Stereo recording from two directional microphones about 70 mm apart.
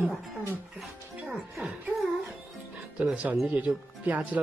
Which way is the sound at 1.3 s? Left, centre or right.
Centre.